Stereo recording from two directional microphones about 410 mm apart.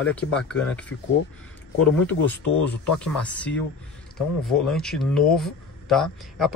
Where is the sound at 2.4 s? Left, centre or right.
Left.